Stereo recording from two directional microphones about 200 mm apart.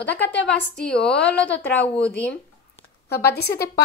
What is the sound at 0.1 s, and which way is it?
A woman's voice, 10° left (ahead or behind).